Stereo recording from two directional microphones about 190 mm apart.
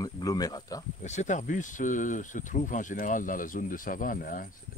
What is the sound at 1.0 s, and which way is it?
Speech, 40° left (ahead or behind).